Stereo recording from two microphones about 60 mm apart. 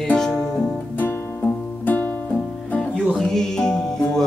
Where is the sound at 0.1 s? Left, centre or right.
Centre.